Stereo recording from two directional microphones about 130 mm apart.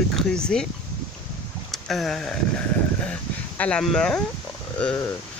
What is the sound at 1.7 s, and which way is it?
Speech, centre (ahead or behind).